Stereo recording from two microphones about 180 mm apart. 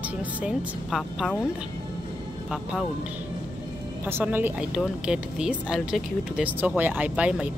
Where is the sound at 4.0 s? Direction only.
10° right (ahead or behind).